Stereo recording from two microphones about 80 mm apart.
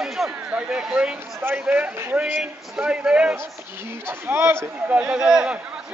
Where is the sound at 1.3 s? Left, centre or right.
Right.